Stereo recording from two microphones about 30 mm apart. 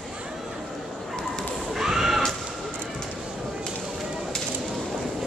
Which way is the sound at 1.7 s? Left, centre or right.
Centre.